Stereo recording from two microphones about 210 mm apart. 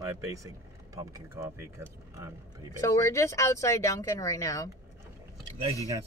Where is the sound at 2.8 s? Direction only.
15° left (ahead or behind).